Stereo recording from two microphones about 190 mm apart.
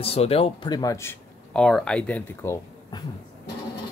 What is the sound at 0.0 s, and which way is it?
Speech, 30° left (ahead or behind).